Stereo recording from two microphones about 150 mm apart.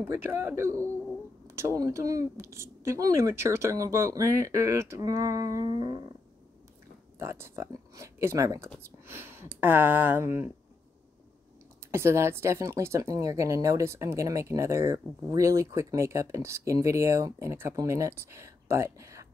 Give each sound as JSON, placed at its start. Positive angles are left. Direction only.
{"t": 0.0, "sound": "speech", "side_deg": -15}
{"t": 0.8, "sound": "a sound", "side_deg": 5}
{"t": 1.5, "sound": "speech", "side_deg": -20}
{"t": 7.2, "sound": "speech", "side_deg": -15}
{"t": 11.9, "sound": "speech", "side_deg": -20}